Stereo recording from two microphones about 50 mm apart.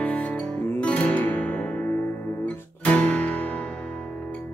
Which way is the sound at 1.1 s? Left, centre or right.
Left.